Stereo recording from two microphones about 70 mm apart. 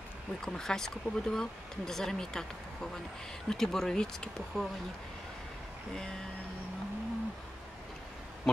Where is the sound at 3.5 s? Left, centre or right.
Centre.